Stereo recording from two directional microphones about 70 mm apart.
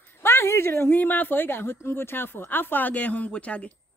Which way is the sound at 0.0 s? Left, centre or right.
Left.